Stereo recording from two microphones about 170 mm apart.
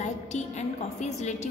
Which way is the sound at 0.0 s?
40° left (ahead or behind).